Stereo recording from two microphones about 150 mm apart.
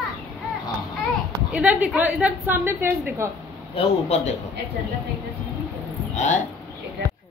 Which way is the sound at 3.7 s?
45° left (ahead or behind).